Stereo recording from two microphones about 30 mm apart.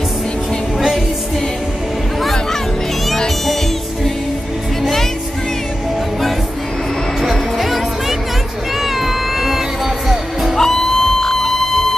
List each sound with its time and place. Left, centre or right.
7.2 s music: centre
8.8 s cat: centre
10.6 s music: centre